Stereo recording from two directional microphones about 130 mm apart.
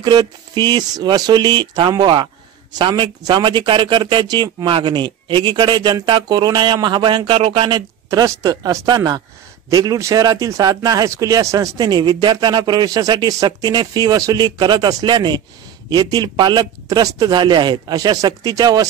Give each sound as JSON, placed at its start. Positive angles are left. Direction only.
{"t": 0.0, "sound": "a man's voice", "side_deg": -35}